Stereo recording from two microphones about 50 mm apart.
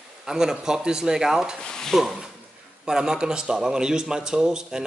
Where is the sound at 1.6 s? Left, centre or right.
Centre.